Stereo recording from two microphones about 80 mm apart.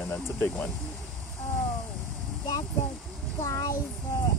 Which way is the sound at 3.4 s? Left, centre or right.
Left.